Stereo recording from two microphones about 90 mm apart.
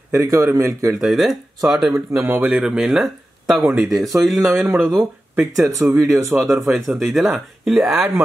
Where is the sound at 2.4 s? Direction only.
10° right (ahead or behind).